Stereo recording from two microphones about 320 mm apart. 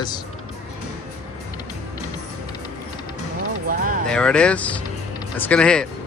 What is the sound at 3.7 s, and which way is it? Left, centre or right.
Speech, right.